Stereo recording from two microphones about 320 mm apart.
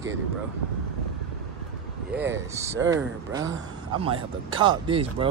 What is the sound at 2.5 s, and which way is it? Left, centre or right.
Speech, centre.